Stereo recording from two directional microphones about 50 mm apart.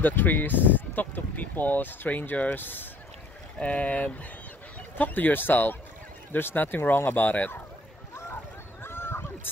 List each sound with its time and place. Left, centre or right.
0.0 s speech: left
3.6 s speech: left
8.8 s honk: left